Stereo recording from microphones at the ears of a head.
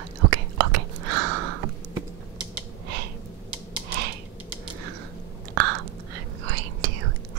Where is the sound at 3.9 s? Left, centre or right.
Right.